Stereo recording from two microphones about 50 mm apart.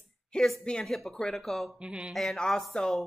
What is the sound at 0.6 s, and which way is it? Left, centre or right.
Speech, centre.